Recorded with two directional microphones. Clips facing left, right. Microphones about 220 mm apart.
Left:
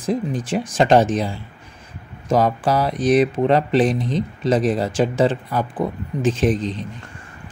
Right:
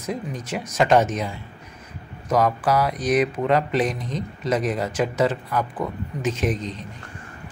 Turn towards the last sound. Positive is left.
turn(degrees=30)  # may be behind; listen again after turning